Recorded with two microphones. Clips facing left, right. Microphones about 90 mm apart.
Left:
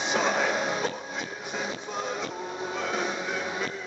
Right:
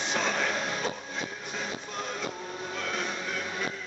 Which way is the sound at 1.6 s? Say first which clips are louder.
Left 3 dB; 5° left (ahead or behind).